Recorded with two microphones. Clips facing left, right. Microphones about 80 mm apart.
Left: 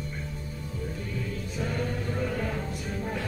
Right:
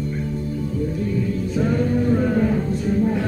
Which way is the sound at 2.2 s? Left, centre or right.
Right.